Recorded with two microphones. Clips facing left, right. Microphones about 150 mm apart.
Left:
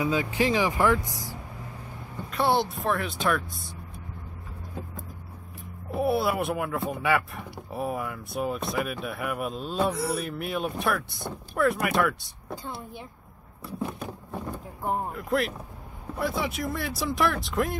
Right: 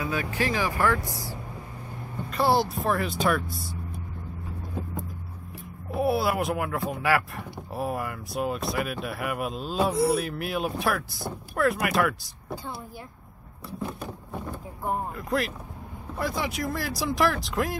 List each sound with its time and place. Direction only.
0.0 s speech: 15° left (ahead or behind)
2.3 s speech: centre (ahead or behind)
5.9 s speech: centre (ahead or behind)
14.9 s speech: centre (ahead or behind)